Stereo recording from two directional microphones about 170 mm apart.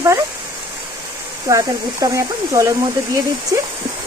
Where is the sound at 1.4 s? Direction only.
20° right (ahead or behind).